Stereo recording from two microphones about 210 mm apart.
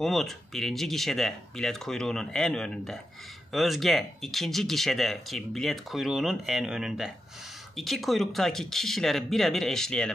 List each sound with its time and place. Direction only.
0.0 s speech: centre (ahead or behind)